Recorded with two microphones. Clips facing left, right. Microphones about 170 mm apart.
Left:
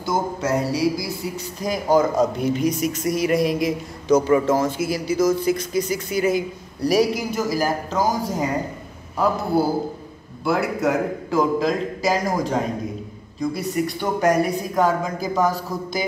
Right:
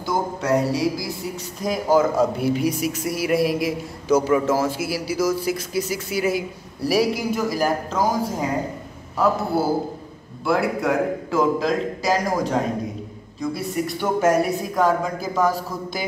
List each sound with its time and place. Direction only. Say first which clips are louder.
0.0 s a man's voice: left 1 dB; centre (ahead or behind)
9.5 s a man's voice: left 1 dB; 5° right (ahead or behind)